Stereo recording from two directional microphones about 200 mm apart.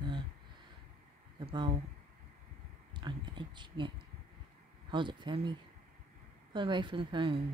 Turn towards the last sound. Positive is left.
turn(degrees=-25)  # may be behind; listen again after turning